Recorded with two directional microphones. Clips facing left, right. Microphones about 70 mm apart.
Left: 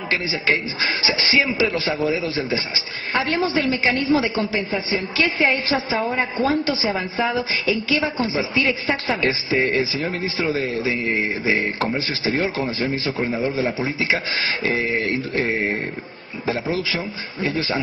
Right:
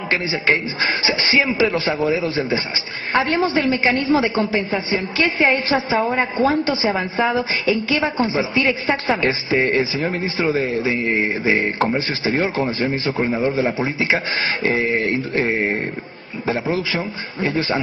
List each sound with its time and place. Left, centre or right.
0.1 s a woman's voice: right
6.3 s a man's voice: right
6.7 s a woman's voice: right